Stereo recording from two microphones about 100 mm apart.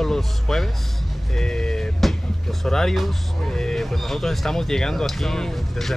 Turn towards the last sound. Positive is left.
turn(degrees=5)  # may be behind; listen again after turning